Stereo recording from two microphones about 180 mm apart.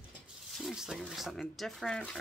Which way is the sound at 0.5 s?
Centre (ahead or behind).